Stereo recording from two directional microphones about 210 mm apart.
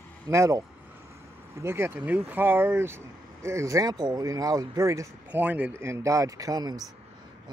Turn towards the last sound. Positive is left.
turn(degrees=-20)  # may be behind; listen again after turning